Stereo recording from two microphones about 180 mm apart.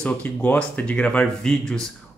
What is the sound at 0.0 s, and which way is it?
Speech, 5° left (ahead or behind).